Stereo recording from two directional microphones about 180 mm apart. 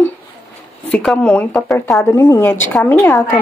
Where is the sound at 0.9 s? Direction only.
5° left (ahead or behind).